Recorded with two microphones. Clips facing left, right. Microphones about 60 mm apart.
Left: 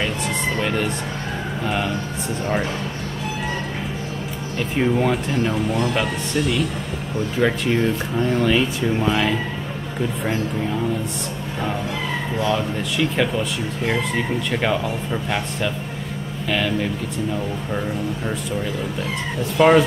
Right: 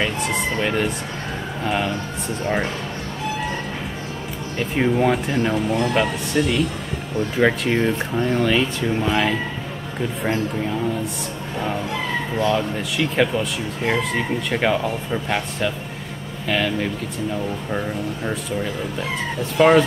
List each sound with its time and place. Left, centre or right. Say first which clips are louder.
0.6 s speech: right 1 dB; centre
4.6 s speech: right 1 dB; centre
7.4 s speech: right 1 dB; centre
8.3 s speech: left 1 dB; centre
12.4 s speech: right 1 dB; centre
19.5 s speech: even; centre